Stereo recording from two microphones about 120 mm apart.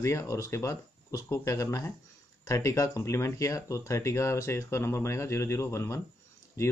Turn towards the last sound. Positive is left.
turn(degrees=25)  # may be behind; listen again after turning